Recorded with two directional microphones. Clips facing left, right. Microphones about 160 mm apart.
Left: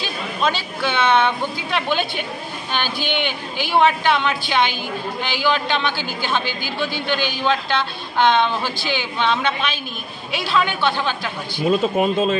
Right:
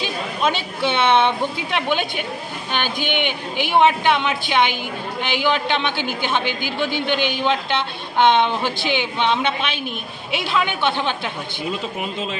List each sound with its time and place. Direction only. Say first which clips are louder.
0.0 s a man's voice: right 1 dB; 20° right (ahead or behind)
12.0 s a man's voice: left 9 dB; 50° left (ahead or behind)